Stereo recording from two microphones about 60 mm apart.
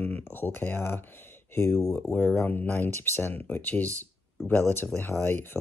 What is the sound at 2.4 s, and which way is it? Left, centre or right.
Speech, left.